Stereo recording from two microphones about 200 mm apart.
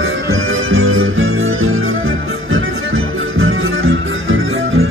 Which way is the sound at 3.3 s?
90° right.